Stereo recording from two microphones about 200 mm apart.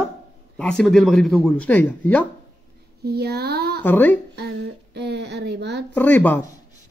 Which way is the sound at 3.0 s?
50° right (ahead or behind).